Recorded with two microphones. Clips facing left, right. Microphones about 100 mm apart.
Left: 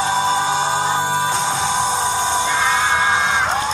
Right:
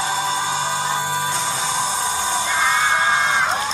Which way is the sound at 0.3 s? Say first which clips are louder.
Left 4 dB; 30° left (ahead or behind).